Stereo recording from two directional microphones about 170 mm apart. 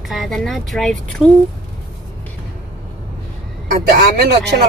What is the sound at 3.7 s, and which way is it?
Speech, 70° right (ahead or behind).